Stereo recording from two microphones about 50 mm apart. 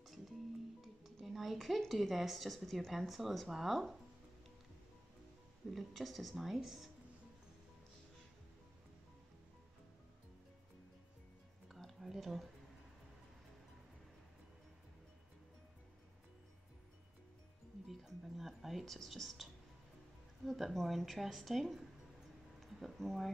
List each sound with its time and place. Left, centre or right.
0.0 s speech: centre
5.7 s a woman's voice: centre
11.7 s a sound: centre
17.8 s music: centre
18.9 s a woman's voice: centre